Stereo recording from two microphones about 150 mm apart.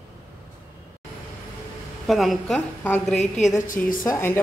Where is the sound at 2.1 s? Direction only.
Centre (ahead or behind).